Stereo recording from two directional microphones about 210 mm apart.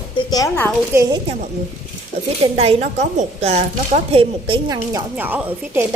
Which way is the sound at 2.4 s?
30° right (ahead or behind).